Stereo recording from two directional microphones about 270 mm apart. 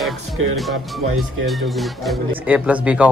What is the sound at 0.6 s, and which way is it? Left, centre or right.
A man's voice, centre.